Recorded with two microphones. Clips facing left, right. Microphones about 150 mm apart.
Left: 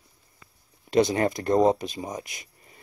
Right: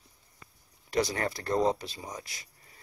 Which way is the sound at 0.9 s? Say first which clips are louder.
Left 8 dB; 20° left (ahead or behind).